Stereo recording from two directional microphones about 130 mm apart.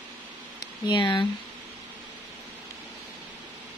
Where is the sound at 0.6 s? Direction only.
35° left (ahead or behind).